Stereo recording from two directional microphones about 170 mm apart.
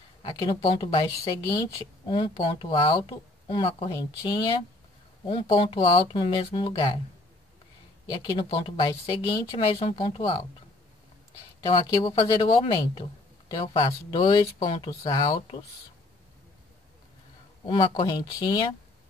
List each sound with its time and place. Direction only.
0.2 s speech: 30° left (ahead or behind)
2.0 s speech: 30° left (ahead or behind)
8.1 s speech: 25° left (ahead or behind)
11.6 s speech: 30° left (ahead or behind)
17.6 s speech: 30° left (ahead or behind)